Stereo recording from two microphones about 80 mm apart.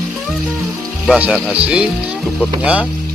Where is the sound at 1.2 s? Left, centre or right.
Centre.